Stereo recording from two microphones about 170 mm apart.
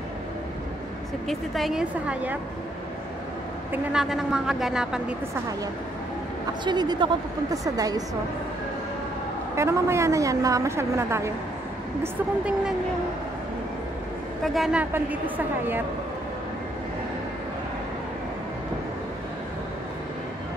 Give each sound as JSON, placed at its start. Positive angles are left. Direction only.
{"t": 1.2, "sound": "a woman's voice", "side_deg": 0}
{"t": 3.7, "sound": "a woman's voice", "side_deg": -5}
{"t": 6.6, "sound": "speech", "side_deg": -25}
{"t": 9.6, "sound": "a woman's voice", "side_deg": -15}
{"t": 14.4, "sound": "a woman's voice", "side_deg": 0}